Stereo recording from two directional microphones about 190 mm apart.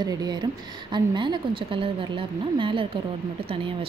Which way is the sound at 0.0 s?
20° right (ahead or behind).